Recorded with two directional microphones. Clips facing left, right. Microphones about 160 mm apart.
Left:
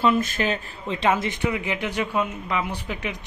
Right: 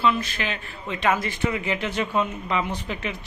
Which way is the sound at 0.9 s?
25° left (ahead or behind).